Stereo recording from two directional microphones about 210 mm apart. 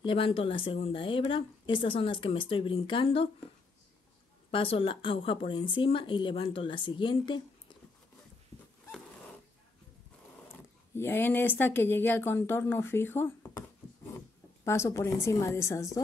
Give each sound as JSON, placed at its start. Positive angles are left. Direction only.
{"t": 0.0, "sound": "a woman's voice", "side_deg": 25}
{"t": 4.5, "sound": "a woman's voice", "side_deg": 25}
{"t": 11.0, "sound": "a woman's voice", "side_deg": 10}